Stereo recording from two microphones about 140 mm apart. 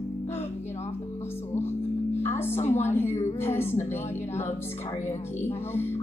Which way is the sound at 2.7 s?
15° left (ahead or behind).